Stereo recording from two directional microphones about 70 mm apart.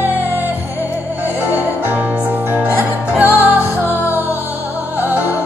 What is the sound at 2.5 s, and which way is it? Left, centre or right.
Music, right.